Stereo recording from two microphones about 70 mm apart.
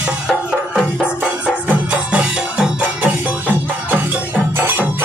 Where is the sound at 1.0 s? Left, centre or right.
Centre.